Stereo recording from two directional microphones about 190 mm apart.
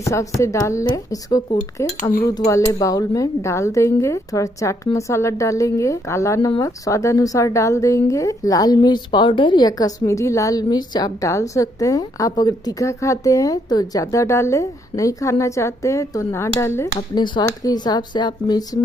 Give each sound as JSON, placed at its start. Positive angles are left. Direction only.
{"t": 0.0, "sound": "speech", "side_deg": 15}